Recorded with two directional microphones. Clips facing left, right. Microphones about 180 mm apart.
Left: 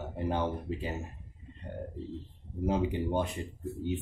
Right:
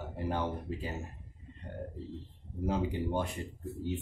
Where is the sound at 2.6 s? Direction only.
20° left (ahead or behind).